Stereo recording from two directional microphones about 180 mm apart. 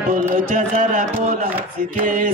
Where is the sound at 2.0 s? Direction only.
45° right (ahead or behind).